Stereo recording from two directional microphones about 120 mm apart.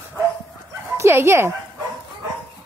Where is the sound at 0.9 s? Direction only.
25° right (ahead or behind).